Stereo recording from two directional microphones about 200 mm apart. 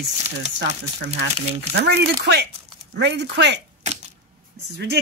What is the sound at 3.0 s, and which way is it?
Speech, 60° right (ahead or behind).